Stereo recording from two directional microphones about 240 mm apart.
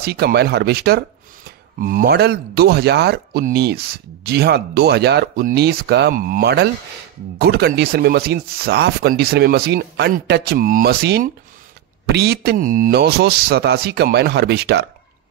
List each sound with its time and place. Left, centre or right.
0.0 s a man's voice: right